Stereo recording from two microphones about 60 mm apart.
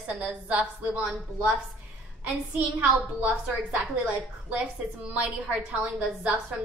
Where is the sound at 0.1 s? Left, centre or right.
Centre.